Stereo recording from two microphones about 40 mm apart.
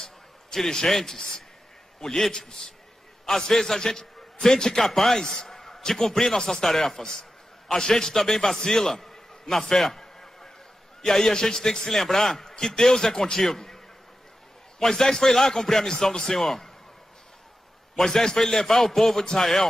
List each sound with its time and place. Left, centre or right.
0.6 s a man's voice: centre
14.8 s a man's voice: centre
17.9 s a man's voice: centre